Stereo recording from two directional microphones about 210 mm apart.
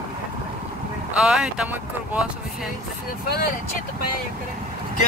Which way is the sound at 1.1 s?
5° right (ahead or behind).